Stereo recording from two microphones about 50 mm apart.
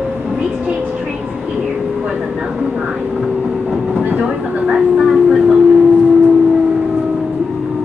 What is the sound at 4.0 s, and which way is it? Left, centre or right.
Vehicle, right.